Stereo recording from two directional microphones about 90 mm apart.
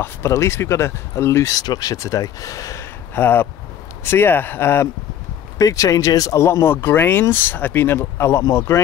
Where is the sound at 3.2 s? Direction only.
25° left (ahead or behind).